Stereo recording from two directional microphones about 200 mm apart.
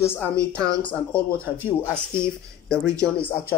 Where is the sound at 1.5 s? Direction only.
10° right (ahead or behind).